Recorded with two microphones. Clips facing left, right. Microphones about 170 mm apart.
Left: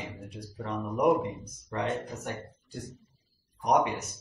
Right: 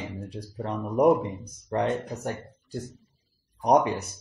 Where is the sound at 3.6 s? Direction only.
35° right (ahead or behind).